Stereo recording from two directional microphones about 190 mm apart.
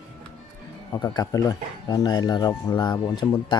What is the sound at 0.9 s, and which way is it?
Speech, 20° left (ahead or behind).